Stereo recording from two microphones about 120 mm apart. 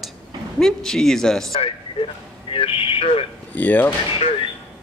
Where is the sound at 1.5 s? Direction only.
50° left (ahead or behind).